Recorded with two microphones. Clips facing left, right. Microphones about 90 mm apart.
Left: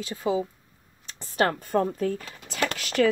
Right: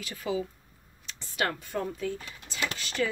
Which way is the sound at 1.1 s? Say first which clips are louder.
Left 6 dB; 45° left (ahead or behind).